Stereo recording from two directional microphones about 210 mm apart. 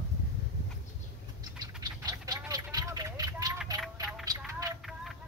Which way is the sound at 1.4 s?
20° right (ahead or behind).